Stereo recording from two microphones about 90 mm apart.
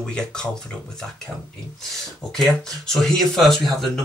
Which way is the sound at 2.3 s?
5° left (ahead or behind).